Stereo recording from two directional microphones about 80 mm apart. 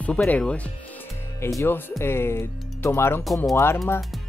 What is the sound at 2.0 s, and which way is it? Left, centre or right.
Speech, left.